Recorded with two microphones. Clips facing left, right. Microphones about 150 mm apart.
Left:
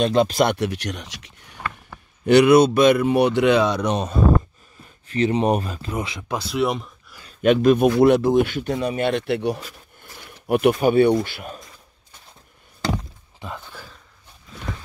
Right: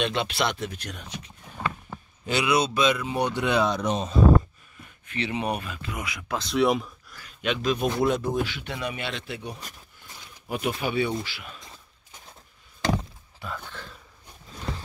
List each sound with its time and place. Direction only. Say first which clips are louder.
0.0 s speech: left 9 dB; 40° left (ahead or behind)
0.5 s speech: left 8 dB; 80° left
2.2 s speech: left 11 dB; 60° left (ahead or behind)
5.0 s speech: left 9 dB; 35° left (ahead or behind)
6.3 s speech: even; 5° left (ahead or behind)
7.4 s speech: left 10 dB; 55° left (ahead or behind); by 8.5 s 80° left
8.5 s speech: left 9 dB; 45° left (ahead or behind); by 9.6 s 75° left (ahead or behind)
10.2 s a sound: left 11 dB; 60° left (ahead or behind)
10.8 s speech: left 11 dB; 50° left (ahead or behind)
13.4 s speech: left 2 dB; 20° left (ahead or behind)